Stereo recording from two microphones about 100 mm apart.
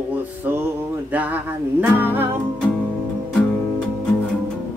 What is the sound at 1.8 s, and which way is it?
Music, 20° right (ahead or behind).